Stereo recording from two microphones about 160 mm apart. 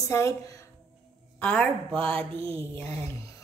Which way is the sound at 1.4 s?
10° left (ahead or behind).